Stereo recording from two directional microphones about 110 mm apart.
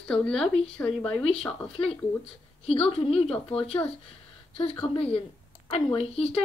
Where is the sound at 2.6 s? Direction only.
60° left (ahead or behind).